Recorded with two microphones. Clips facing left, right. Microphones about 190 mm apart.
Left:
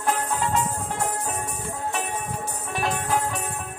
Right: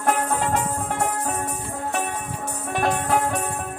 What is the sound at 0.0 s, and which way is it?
Music, 55° right (ahead or behind).